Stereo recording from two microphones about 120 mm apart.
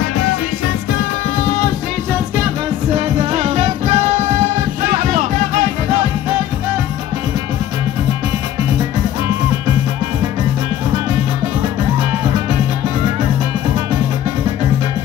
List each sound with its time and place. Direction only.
2.9 s music: 60° right (ahead or behind)